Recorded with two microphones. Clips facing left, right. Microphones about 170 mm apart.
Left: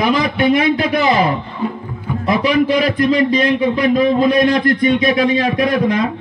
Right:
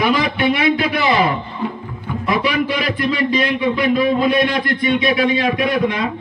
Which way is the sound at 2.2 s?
40° left (ahead or behind).